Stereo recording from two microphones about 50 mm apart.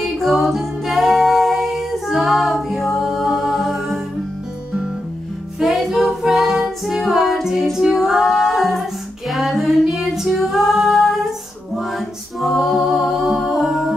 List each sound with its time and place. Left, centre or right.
0.0 s a capella: centre
5.6 s music: centre
7.7 s a capella: centre
9.3 s music: centre
12.4 s a capella: centre